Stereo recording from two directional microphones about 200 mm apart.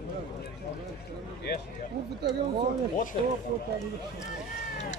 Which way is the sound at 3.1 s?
40° left (ahead or behind).